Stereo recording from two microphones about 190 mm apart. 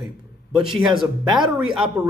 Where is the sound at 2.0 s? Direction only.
15° right (ahead or behind).